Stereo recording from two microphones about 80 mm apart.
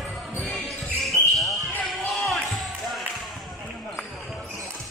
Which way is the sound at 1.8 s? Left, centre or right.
Centre.